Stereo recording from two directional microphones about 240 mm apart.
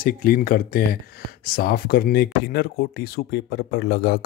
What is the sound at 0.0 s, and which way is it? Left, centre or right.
Speech, left.